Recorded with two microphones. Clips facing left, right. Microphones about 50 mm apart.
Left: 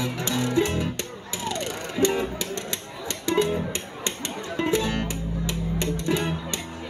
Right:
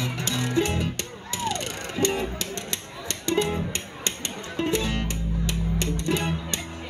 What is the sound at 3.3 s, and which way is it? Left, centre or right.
Music, centre.